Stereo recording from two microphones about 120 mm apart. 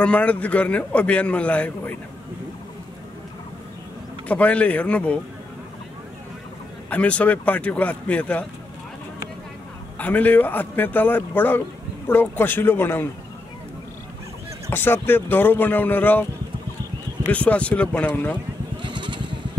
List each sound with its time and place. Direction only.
0.0 s a man's voice: 10° left (ahead or behind)
4.3 s a man's voice: 10° left (ahead or behind)
6.9 s a man's voice: 10° left (ahead or behind)
9.9 s a man's voice: 15° left (ahead or behind)
14.7 s a man's voice: 15° left (ahead or behind)
17.3 s a man's voice: 10° left (ahead or behind)
18.8 s vehicle: 40° right (ahead or behind)